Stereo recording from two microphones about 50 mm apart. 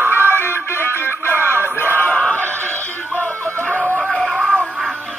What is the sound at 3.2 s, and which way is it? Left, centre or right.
Music, left.